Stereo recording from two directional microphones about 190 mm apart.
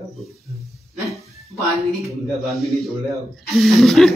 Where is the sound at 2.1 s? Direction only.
15° right (ahead or behind).